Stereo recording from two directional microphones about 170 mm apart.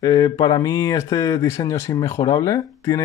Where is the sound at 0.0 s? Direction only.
20° left (ahead or behind).